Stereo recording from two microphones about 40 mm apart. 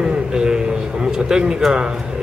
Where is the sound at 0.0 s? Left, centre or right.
Centre.